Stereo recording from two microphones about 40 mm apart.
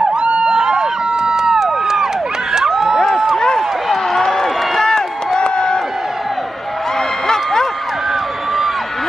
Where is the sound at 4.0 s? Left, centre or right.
Centre.